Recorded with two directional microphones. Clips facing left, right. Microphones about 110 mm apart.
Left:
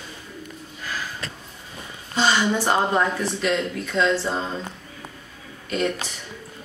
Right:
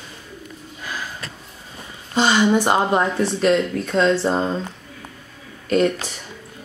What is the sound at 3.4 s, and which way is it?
Speech, 40° right (ahead or behind).